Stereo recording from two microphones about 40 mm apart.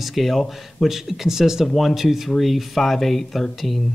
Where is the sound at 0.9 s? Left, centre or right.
Centre.